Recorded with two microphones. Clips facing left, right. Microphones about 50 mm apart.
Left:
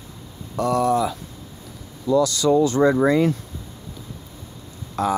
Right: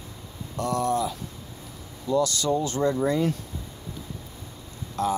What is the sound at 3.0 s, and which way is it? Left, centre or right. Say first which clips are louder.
Speech: left 7 dB; left.